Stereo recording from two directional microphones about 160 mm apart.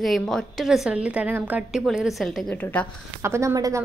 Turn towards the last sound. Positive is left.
turn(degrees=-20)  # may be behind; listen again after turning